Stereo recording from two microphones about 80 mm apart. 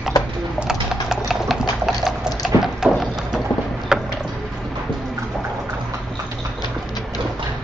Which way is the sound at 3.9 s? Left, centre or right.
Centre.